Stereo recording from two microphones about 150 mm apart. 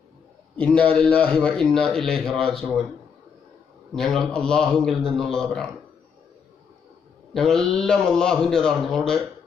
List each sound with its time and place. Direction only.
0.6 s a man's voice: 10° left (ahead or behind)
3.9 s a man's voice: centre (ahead or behind)
7.3 s a man's voice: 5° left (ahead or behind)